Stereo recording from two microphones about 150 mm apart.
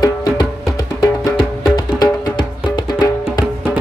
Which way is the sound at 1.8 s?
25° left (ahead or behind).